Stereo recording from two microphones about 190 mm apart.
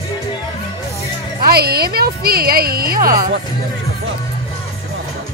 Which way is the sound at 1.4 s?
55° right (ahead or behind).